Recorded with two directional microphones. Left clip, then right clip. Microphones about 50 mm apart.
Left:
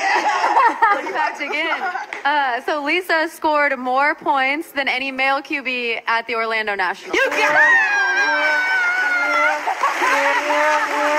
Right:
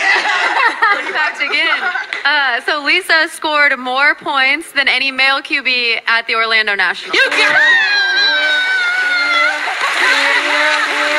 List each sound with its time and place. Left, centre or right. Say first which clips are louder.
0.0 s a sound: right 4 dB; right
2.2 s a woman's voice: right 4 dB; right
8.4 s splash: right 4 dB; right